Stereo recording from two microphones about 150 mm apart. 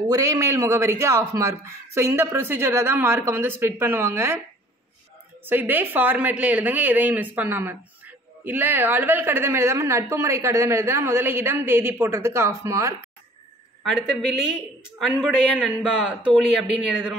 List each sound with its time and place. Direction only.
0.1 s a man's voice: 20° right (ahead or behind)
5.4 s a woman's voice: 15° right (ahead or behind)
13.8 s a man's voice: centre (ahead or behind)